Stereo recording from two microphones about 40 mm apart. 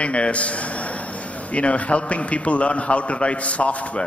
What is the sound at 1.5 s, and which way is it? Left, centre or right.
A man's voice, left.